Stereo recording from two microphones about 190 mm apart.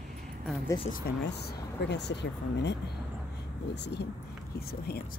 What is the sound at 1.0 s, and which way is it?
Speech, 60° left (ahead or behind).